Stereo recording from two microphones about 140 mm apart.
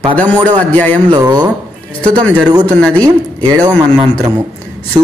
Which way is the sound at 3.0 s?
25° right (ahead or behind).